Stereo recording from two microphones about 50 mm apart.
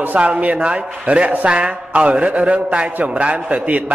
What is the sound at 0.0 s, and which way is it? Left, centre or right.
A man's voice, right.